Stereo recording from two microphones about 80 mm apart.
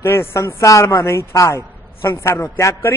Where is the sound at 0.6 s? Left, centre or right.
Left.